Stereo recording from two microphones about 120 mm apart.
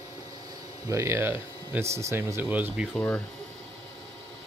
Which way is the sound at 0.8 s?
25° right (ahead or behind).